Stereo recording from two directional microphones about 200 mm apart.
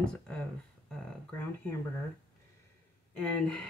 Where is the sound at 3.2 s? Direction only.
5° left (ahead or behind).